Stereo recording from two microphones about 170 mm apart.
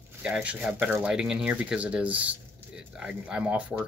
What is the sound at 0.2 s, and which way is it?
Speech, 5° right (ahead or behind).